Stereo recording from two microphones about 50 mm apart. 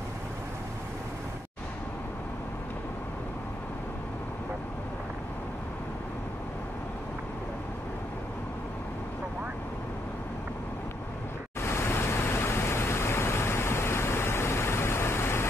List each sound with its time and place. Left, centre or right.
11.6 s pink noise: left